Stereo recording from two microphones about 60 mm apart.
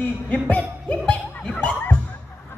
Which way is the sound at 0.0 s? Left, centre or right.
Left.